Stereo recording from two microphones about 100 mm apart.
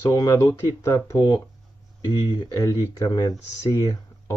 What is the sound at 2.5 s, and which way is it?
Speech, 40° left (ahead or behind).